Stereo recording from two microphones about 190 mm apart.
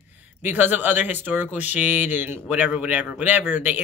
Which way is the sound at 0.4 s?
10° right (ahead or behind).